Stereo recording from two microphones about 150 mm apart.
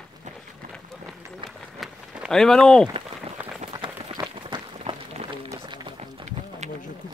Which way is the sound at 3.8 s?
35° right (ahead or behind).